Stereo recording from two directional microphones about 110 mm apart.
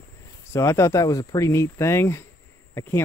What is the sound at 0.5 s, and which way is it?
Speech, 25° left (ahead or behind).